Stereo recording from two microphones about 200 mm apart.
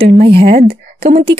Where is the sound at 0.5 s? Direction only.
50° right (ahead or behind).